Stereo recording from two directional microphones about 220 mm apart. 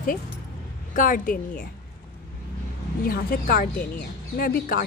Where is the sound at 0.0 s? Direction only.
40° left (ahead or behind).